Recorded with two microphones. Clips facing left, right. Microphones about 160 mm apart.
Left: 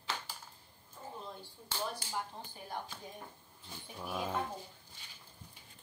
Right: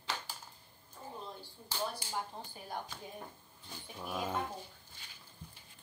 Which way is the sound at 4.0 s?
5° right (ahead or behind).